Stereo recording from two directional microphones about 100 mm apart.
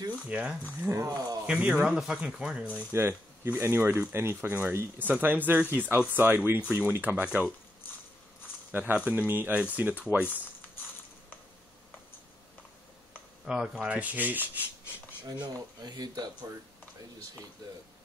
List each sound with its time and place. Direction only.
0.3 s rub: 10° right (ahead or behind)
0.7 s speech: 25° right (ahead or behind)
1.4 s rub: 10° right (ahead or behind)
2.9 s speech: 25° right (ahead or behind)
6.7 s rub: 20° right (ahead or behind)
8.7 s speech: 20° right (ahead or behind)
9.3 s rub: 15° right (ahead or behind)
13.5 s rub: 5° right (ahead or behind)
15.4 s speech: 45° right (ahead or behind)